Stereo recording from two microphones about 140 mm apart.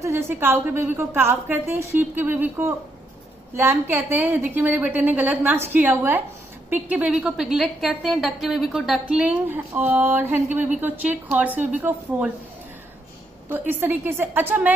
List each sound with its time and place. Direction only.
0.0 s a woman's voice: 20° right (ahead or behind)
13.5 s a woman's voice: 15° right (ahead or behind)